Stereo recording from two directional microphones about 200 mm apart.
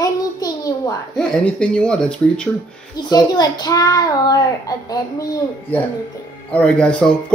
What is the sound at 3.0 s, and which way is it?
A child's voice, 20° left (ahead or behind).